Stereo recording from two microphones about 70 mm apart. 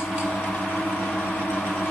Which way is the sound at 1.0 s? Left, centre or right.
Centre.